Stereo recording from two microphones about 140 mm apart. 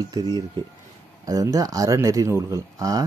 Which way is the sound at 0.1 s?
30° right (ahead or behind).